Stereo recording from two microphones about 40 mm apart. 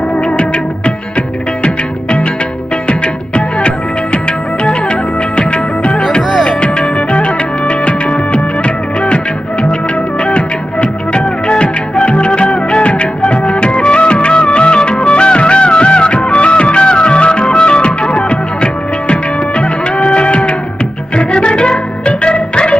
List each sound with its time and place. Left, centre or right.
1.6 s music: left
10.2 s music of bollywood: left
16.3 s music: left